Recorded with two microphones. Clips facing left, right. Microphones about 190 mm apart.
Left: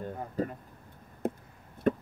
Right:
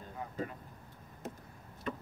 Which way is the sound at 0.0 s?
45° left (ahead or behind).